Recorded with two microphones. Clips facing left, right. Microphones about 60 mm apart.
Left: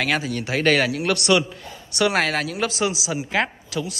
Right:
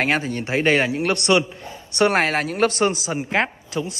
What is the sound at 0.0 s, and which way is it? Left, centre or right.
A man's voice, right.